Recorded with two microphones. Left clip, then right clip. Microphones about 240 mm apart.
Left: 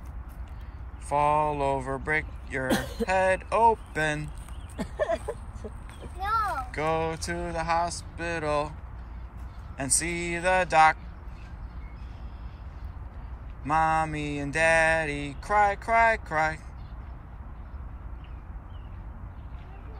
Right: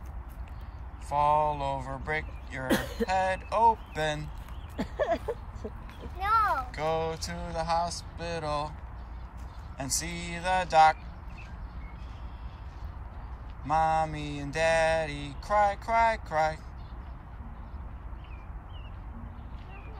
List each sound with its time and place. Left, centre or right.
1.0 s mantra: centre
2.7 s speech: left
3.1 s mantra: centre
4.7 s a sound: left
6.1 s mantra: centre
9.8 s mantra: centre
13.7 s mantra: centre